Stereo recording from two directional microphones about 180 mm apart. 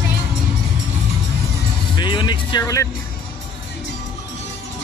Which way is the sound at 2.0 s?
25° left (ahead or behind).